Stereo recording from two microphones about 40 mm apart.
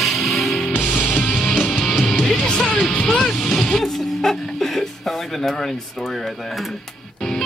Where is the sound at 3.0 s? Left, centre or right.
Centre.